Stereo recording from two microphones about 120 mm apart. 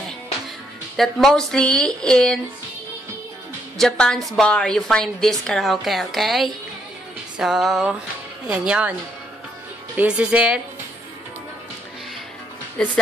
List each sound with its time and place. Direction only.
0.9 s speech: centre (ahead or behind)
3.7 s a woman's voice: 5° left (ahead or behind)
9.9 s speech: 10° right (ahead or behind)
12.8 s speech: 5° left (ahead or behind)